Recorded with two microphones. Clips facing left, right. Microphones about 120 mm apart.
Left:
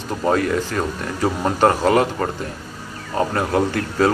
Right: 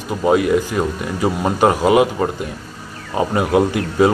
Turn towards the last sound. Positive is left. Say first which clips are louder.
# right 4 dB
turn(degrees=-15)  # may be behind; listen again after turning